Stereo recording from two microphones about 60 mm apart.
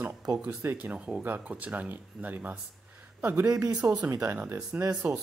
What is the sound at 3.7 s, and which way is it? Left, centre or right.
Speech, centre.